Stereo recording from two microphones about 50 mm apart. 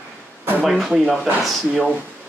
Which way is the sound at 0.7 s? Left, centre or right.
Centre.